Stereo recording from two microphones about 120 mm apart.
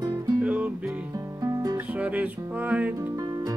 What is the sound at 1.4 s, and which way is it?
Music, 30° right (ahead or behind).